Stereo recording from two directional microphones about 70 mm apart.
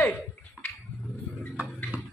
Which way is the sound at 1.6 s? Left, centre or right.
Right.